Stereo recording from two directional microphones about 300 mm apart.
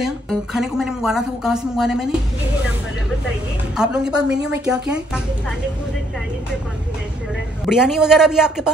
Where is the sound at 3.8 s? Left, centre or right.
Centre.